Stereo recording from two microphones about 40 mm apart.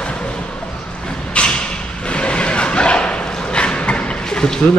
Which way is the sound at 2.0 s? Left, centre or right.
Left.